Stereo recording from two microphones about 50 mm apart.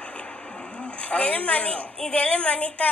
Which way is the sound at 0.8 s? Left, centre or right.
Left.